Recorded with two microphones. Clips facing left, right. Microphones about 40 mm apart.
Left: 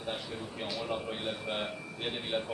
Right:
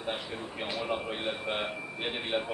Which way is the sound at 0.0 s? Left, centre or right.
Right.